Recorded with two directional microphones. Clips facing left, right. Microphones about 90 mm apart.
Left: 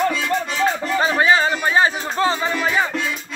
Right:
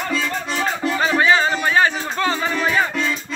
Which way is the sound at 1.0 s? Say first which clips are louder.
Even; 25° left (ahead or behind).